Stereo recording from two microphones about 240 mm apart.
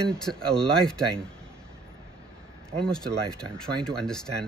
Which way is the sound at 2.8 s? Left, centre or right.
Centre.